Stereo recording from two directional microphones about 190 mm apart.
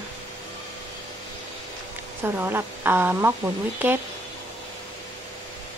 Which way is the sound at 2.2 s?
10° right (ahead or behind).